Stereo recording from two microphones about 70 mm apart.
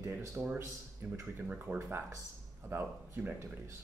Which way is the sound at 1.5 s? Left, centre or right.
Right.